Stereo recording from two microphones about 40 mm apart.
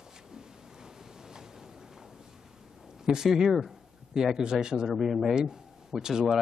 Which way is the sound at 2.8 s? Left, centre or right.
Centre.